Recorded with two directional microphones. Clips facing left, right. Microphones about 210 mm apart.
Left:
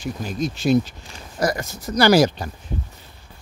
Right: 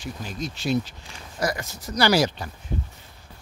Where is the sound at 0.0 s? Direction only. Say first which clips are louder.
Left 7 dB; 45° left (ahead or behind).